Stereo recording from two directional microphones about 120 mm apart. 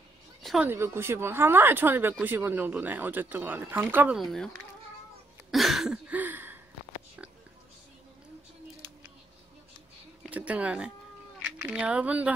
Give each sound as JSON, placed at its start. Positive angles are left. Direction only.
{"t": 0.6, "sound": "speech", "side_deg": -20}
{"t": 4.2, "sound": "speech", "side_deg": 0}
{"t": 5.5, "sound": "a sound", "side_deg": 0}
{"t": 10.3, "sound": "speech", "side_deg": -10}